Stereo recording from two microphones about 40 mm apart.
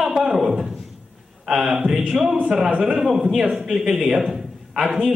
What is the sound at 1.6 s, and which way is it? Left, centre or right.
A man's voice, centre.